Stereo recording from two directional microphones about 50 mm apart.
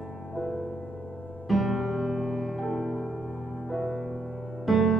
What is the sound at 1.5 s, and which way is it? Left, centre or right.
Music, centre.